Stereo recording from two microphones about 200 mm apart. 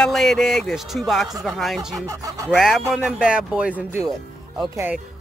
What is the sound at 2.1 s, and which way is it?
Speech, 15° right (ahead or behind).